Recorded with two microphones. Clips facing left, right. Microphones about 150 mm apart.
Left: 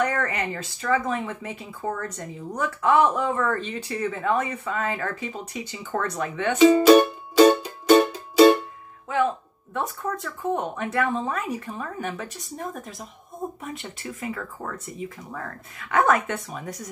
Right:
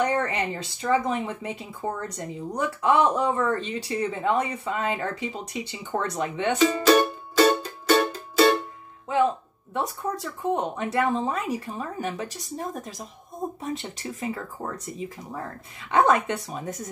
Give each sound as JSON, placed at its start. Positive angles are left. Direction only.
{"t": 0.1, "sound": "speech", "side_deg": -30}
{"t": 6.6, "sound": "music", "side_deg": 10}
{"t": 10.0, "sound": "speech", "side_deg": -20}
{"t": 13.6, "sound": "speech", "side_deg": -35}
{"t": 13.8, "sound": "speech", "side_deg": -25}